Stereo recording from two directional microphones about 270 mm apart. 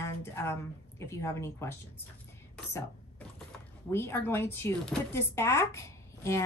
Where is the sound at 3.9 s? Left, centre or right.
Centre.